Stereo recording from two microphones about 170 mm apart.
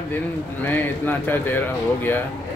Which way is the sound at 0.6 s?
10° left (ahead or behind).